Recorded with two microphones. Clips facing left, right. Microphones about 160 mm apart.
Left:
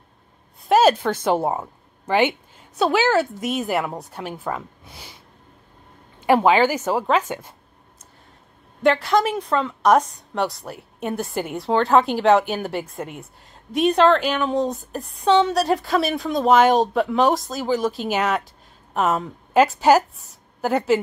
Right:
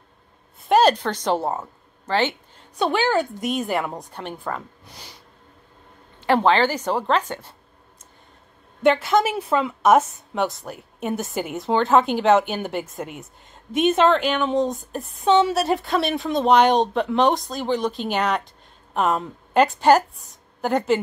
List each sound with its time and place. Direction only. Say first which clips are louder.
0.7 s a woman's voice: left 1 dB; 5° left (ahead or behind)
6.2 s speech: left 2 dB; 10° left (ahead or behind)
8.8 s a woman's voice: even; centre (ahead or behind)